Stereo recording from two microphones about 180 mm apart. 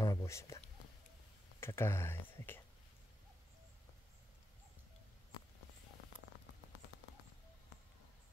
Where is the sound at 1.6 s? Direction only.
15° left (ahead or behind).